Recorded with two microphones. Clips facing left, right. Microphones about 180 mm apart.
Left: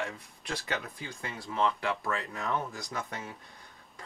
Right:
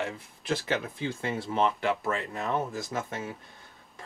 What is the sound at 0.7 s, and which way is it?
Speech, 25° right (ahead or behind).